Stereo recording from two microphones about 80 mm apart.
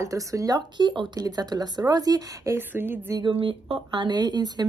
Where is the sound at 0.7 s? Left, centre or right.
Right.